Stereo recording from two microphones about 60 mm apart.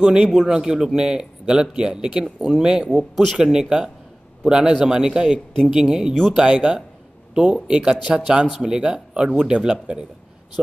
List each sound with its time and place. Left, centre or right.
0.0 s speech: centre
2.9 s a man's voice: centre
3.4 s speech: centre